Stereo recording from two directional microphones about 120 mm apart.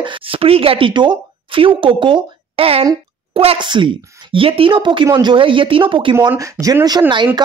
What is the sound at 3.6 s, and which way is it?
Speech, 40° right (ahead or behind).